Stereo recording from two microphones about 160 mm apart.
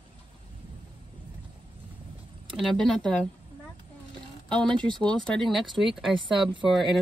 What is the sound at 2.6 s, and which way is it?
Speech, 5° left (ahead or behind).